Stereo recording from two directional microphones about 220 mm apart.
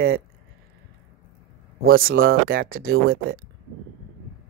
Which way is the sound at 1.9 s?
40° right (ahead or behind).